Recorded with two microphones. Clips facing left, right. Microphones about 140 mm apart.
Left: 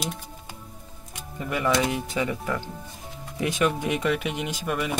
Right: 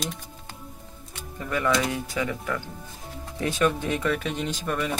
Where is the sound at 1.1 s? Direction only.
15° left (ahead or behind).